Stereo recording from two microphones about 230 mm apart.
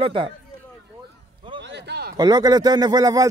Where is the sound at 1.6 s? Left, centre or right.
Right.